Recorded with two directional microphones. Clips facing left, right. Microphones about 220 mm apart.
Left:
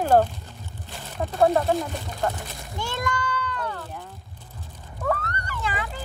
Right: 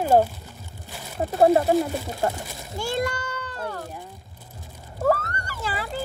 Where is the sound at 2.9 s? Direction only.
40° right (ahead or behind).